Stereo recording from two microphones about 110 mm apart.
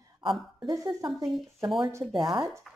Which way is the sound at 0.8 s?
45° right (ahead or behind).